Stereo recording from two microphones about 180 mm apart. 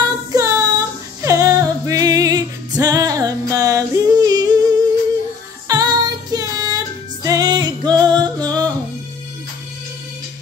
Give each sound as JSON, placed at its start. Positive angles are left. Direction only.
{"t": 0.3, "sound": "female singing", "side_deg": -20}
{"t": 5.7, "sound": "music", "side_deg": -20}